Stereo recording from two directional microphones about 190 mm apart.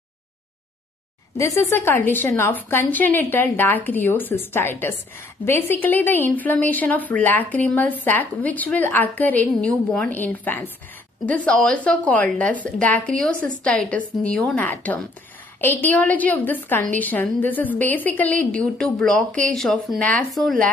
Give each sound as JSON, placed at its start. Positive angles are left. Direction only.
{"t": 1.3, "sound": "a woman's voice", "side_deg": 15}